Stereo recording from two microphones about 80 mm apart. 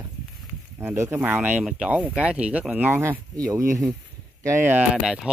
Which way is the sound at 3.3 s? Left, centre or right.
Right.